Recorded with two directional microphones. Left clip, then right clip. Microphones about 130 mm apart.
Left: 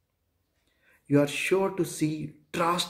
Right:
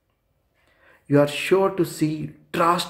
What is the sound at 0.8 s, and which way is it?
A man's voice, 20° left (ahead or behind).